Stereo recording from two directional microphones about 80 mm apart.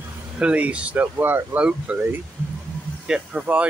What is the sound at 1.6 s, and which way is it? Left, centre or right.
Speech, centre.